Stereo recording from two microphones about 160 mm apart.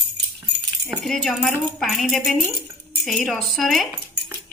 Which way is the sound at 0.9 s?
Centre (ahead or behind).